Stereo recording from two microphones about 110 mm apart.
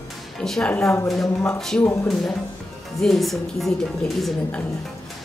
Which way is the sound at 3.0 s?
Centre (ahead or behind).